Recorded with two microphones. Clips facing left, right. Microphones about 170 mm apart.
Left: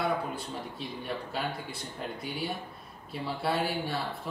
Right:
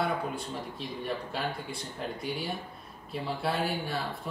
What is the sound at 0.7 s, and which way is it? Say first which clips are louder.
Speech: right 3 dB; centre (ahead or behind).